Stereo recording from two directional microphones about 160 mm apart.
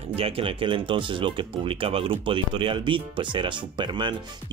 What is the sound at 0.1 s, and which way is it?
Speech, 35° right (ahead or behind).